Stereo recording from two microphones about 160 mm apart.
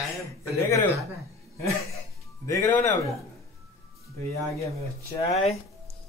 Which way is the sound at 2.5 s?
15° left (ahead or behind).